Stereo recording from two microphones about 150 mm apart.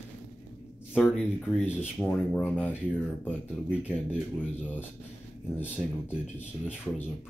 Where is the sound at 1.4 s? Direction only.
10° left (ahead or behind).